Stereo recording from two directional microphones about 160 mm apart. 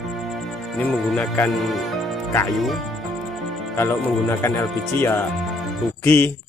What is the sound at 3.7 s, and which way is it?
Speech, 20° left (ahead or behind).